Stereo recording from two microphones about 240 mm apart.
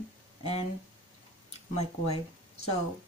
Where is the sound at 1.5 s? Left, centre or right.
Left.